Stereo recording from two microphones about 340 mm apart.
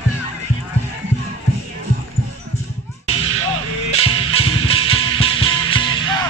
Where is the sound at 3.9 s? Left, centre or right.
Centre.